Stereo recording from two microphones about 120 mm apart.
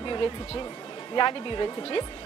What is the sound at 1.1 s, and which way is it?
Speech, 40° left (ahead or behind).